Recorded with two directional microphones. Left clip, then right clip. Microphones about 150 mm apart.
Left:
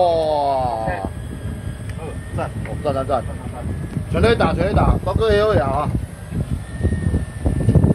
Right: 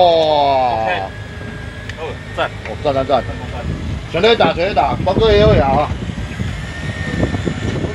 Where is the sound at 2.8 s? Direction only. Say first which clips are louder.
Right 5 dB; 10° left (ahead or behind).